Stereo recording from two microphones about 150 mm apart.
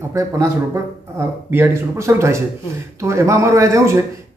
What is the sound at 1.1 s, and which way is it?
Speech, 20° right (ahead or behind).